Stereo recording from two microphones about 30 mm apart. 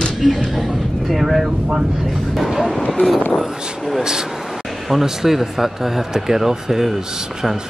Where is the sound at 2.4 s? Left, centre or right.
Centre.